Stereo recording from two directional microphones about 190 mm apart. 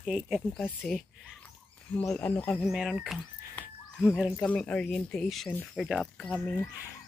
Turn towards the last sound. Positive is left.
turn(degrees=5)  # may be behind; listen again after turning